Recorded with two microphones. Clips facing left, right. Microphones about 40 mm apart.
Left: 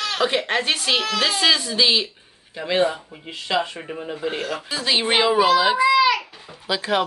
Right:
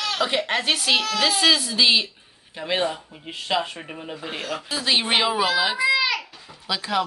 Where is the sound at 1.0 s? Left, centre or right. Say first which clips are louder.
Left 1 dB; left.